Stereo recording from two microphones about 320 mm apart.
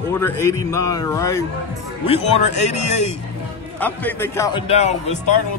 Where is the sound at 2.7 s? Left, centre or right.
Left.